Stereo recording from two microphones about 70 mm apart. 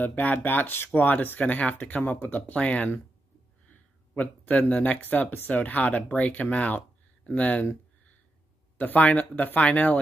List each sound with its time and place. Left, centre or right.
0.0 s speech: left
8.7 s speech: left